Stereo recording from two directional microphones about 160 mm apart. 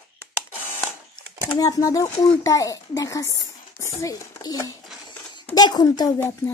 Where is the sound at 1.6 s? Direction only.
20° left (ahead or behind).